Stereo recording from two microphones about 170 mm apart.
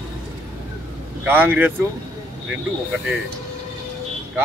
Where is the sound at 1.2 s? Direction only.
10° right (ahead or behind).